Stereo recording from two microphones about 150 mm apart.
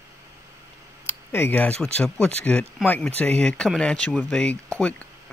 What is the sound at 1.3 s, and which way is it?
Speech, 15° left (ahead or behind).